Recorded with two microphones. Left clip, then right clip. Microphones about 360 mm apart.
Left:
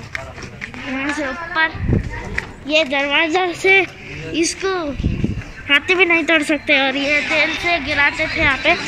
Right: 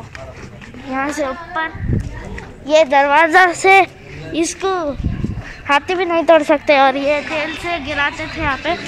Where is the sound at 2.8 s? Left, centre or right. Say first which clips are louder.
Right 6 dB; right.